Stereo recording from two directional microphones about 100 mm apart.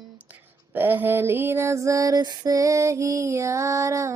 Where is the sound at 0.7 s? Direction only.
20° right (ahead or behind).